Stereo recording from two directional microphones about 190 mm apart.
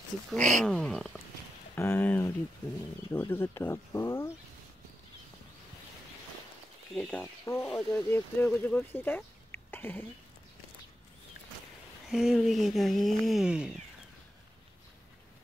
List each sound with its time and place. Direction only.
0.4 s speech: 40° right (ahead or behind)
0.7 s speech: 5° left (ahead or behind)
1.8 s a sound: 10° left (ahead or behind)
3.1 s speech: 10° left (ahead or behind)
6.9 s speech: 5° left (ahead or behind)
12.1 s speech: centre (ahead or behind)